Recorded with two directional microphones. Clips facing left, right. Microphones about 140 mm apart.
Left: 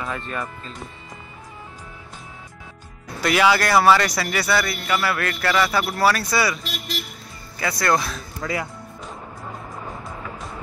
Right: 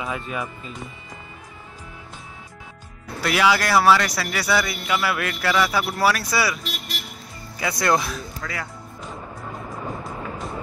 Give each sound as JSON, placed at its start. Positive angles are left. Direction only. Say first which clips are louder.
{"t": 0.0, "sound": "a man's voice", "louder": "even", "side_deg": -5}
{"t": 3.2, "sound": "a man's voice", "louder": "left 2 dB", "side_deg": -5}
{"t": 7.5, "sound": "a man's voice", "louder": "even", "side_deg": -15}
{"t": 8.4, "sound": "speech", "louder": "left 9 dB", "side_deg": 20}